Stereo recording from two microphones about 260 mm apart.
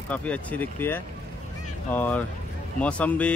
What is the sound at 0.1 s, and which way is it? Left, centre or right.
Speech, centre.